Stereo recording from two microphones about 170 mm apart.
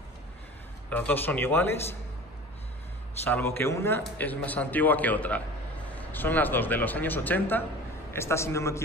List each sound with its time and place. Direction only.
0.8 s a man's voice: 10° left (ahead or behind)
3.3 s a man's voice: 10° left (ahead or behind)